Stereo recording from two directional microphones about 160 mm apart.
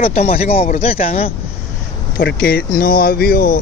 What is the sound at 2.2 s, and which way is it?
Speech, 80° left.